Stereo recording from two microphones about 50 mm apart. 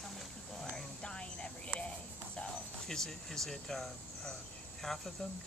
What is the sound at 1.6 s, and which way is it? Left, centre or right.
Cricket, left.